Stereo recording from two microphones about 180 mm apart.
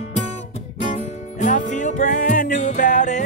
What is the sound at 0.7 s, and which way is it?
Music, 40° left (ahead or behind).